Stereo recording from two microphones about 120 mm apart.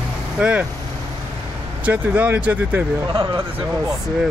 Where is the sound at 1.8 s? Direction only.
15° right (ahead or behind).